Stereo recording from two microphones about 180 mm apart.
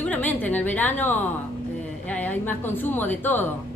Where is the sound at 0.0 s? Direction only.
10° left (ahead or behind).